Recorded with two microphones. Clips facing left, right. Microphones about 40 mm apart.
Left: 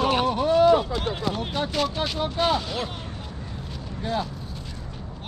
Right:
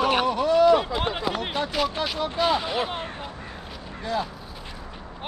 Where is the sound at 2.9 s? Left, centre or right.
Right.